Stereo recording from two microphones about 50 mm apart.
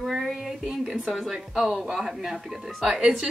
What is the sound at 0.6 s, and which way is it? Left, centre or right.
A woman's voice, centre.